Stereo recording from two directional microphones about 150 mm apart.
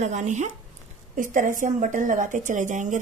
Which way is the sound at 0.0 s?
50° right (ahead or behind).